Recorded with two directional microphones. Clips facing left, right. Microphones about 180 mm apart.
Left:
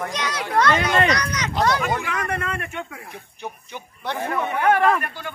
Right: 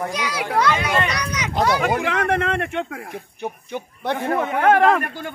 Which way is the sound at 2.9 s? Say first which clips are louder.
Right 6 dB; 55° right (ahead or behind).